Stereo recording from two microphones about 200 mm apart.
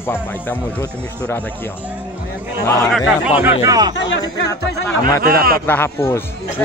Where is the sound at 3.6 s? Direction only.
20° right (ahead or behind).